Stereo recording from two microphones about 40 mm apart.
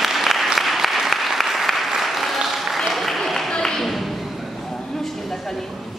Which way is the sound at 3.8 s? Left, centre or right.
Centre.